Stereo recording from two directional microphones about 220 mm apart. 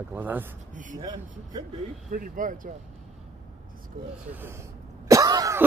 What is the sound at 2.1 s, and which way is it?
Speech, 40° right (ahead or behind).